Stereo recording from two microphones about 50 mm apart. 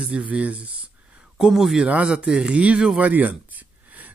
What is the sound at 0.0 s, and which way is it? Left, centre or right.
Speech, right.